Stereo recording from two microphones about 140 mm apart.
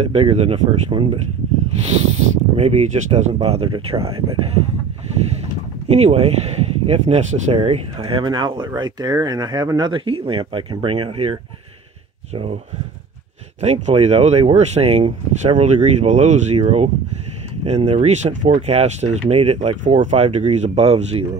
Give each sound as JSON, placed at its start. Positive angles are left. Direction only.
{"t": 0.0, "sound": "speech", "side_deg": -45}
{"t": 5.9, "sound": "speech", "side_deg": -50}
{"t": 13.6, "sound": "speech", "side_deg": -50}
{"t": 20.0, "sound": "speech", "side_deg": -60}